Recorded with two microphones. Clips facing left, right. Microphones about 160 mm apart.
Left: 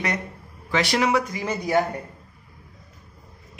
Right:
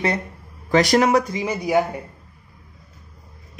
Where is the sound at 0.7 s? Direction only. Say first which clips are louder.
Right 5 dB; 45° right (ahead or behind).